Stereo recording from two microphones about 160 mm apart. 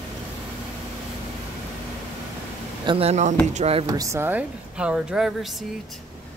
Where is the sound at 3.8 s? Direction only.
20° right (ahead or behind); by 5.6 s centre (ahead or behind).